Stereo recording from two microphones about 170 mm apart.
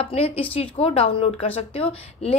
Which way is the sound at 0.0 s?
35° left (ahead or behind).